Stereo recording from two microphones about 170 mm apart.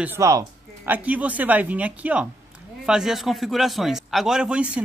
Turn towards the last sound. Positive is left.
turn(degrees=-5)  # may be behind; listen again after turning